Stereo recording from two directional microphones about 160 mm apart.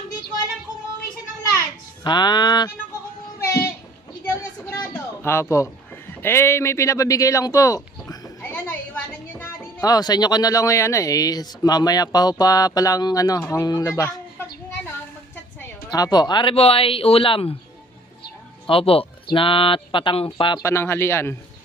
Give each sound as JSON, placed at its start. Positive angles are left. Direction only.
{"t": 2.0, "sound": "speech", "side_deg": 25}
{"t": 4.3, "sound": "a sound", "side_deg": 15}
{"t": 8.4, "sound": "music", "side_deg": 10}
{"t": 9.8, "sound": "speech", "side_deg": 25}
{"t": 15.9, "sound": "speech", "side_deg": 25}
{"t": 18.7, "sound": "speech", "side_deg": 35}
{"t": 20.6, "sound": "speech", "side_deg": 15}